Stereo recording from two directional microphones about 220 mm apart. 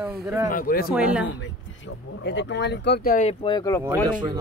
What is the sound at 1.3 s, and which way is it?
Speech, 55° left (ahead or behind).